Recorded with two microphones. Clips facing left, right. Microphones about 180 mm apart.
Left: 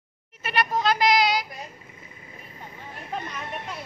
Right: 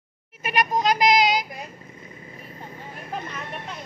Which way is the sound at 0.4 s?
10° right (ahead or behind).